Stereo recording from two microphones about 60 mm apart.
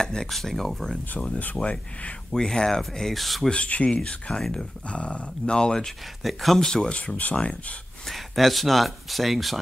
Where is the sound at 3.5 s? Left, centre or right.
Left.